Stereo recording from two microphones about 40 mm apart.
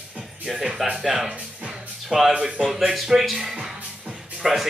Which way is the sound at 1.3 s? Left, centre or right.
Right.